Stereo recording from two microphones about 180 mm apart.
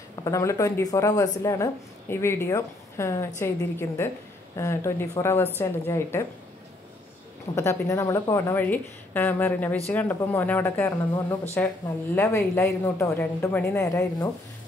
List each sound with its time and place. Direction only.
0.1 s speech: 20° left (ahead or behind)
7.5 s speech: 15° left (ahead or behind)